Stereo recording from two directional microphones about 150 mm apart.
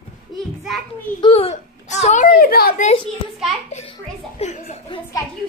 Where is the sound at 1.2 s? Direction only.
40° left (ahead or behind).